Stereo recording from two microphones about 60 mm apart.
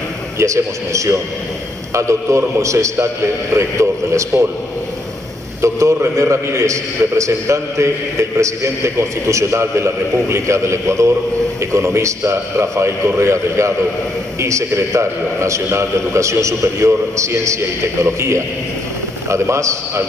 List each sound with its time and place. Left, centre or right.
0.4 s a man's voice: right
5.6 s a man's voice: right